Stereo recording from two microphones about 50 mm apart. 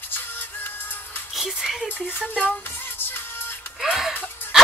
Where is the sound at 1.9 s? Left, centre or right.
Left.